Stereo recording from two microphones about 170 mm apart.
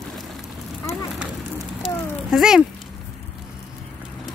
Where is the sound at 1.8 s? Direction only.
5° right (ahead or behind).